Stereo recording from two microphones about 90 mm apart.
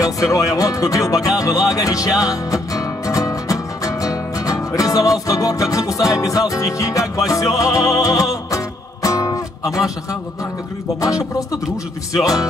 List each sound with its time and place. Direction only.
0.0 s music: 40° left (ahead or behind)
12.1 s music: 40° left (ahead or behind)